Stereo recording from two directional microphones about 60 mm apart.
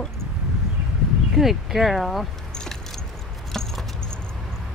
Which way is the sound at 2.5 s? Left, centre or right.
Centre.